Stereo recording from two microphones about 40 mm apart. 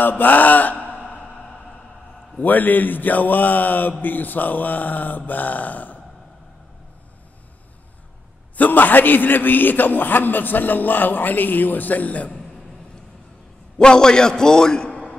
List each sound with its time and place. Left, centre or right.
0.2 s a man's voice: left
2.4 s a man's voice: left
8.5 s a man's voice: left
13.7 s a man's voice: centre